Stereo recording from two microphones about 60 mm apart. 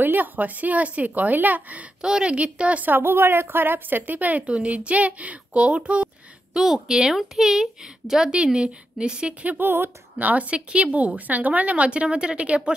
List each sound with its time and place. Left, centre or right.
0.0 s a woman's voice: right
2.0 s a woman's voice: centre
6.5 s a woman's voice: centre
9.5 s a woman's voice: right; by 12.7 s centre